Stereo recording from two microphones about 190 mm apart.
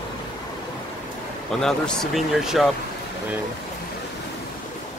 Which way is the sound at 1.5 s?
5° left (ahead or behind).